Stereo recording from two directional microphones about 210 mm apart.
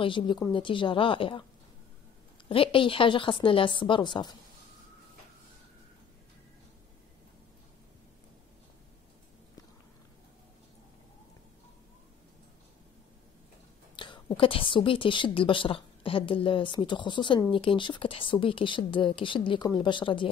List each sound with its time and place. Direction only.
0.0 s a woman's voice: 25° left (ahead or behind)
2.4 s a woman's voice: 25° left (ahead or behind)
13.9 s a woman's voice: 20° left (ahead or behind)